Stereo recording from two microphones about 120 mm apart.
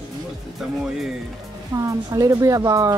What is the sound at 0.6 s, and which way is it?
Speech, 5° right (ahead or behind).